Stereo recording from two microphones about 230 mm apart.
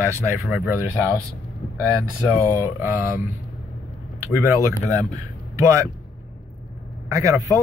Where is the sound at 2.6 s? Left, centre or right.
Centre.